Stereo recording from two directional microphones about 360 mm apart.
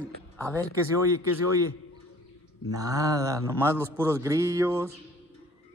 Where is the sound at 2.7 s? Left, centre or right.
Centre.